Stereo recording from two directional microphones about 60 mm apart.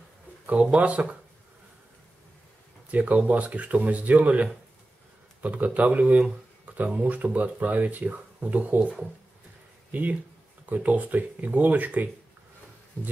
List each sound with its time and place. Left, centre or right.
0.5 s speech: right
2.9 s speech: right